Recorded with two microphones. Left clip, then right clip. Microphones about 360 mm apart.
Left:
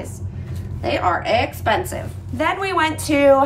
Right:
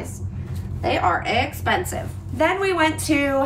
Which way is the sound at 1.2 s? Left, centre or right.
Centre.